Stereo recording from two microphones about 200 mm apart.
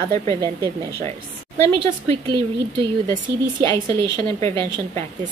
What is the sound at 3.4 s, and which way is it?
Speech, 15° left (ahead or behind).